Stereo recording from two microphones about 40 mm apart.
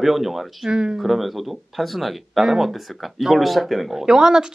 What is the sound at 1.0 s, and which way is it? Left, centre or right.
Speech, centre.